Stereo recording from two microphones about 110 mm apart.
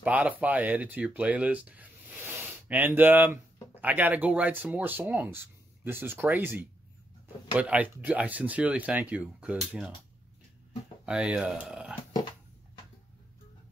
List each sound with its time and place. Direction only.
0.0 s speech: 15° right (ahead or behind)
11.1 s speech: 10° right (ahead or behind)